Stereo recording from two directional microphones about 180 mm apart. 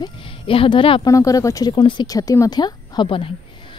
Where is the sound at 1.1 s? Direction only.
20° left (ahead or behind).